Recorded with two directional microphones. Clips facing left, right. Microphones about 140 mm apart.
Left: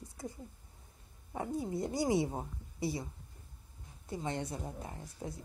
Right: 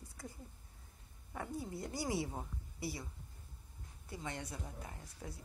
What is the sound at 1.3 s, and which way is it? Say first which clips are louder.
Speech: left 7 dB; 20° left (ahead or behind).